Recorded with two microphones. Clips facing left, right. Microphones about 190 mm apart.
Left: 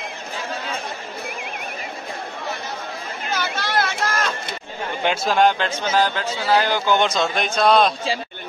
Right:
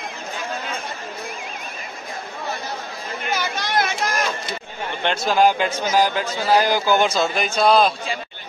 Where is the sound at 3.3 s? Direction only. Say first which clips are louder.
Even; 15° right (ahead or behind).